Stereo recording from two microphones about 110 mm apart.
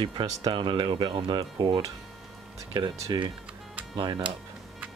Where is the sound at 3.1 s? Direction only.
40° right (ahead or behind).